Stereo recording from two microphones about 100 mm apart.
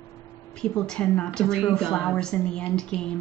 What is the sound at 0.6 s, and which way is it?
Speech, 10° left (ahead or behind).